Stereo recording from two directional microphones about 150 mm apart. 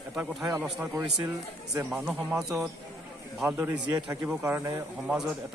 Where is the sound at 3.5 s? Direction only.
20° right (ahead or behind).